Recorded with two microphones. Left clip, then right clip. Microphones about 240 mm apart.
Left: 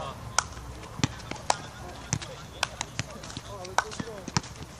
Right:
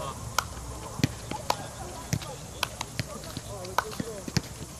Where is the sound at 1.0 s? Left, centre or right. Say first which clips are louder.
Even; centre.